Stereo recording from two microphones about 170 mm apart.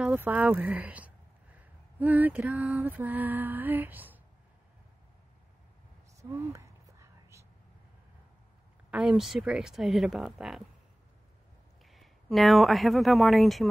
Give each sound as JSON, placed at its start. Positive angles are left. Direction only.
{"t": 0.0, "sound": "speech", "side_deg": -10}
{"t": 6.3, "sound": "a sound", "side_deg": -15}
{"t": 8.9, "sound": "speech", "side_deg": -5}
{"t": 11.8, "sound": "speech", "side_deg": 0}